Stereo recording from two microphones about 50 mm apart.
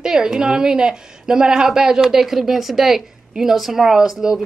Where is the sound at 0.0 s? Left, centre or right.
Centre.